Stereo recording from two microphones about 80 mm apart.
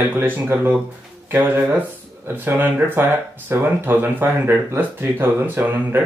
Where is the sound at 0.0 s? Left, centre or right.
Right.